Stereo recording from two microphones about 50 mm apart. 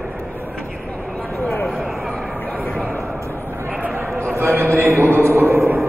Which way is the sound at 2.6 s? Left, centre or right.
Left.